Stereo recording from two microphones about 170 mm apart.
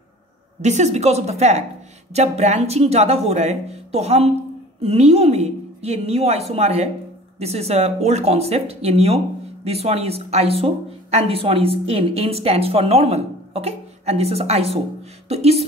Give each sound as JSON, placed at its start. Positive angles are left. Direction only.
{"t": 0.6, "sound": "speech", "side_deg": -45}